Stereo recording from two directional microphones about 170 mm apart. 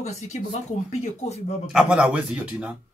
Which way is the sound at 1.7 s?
5° right (ahead or behind).